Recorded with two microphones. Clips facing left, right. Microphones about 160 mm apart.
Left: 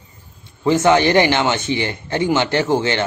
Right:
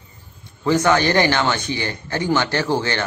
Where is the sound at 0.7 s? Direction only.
20° left (ahead or behind).